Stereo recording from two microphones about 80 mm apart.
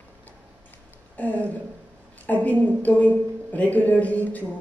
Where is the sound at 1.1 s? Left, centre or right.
Centre.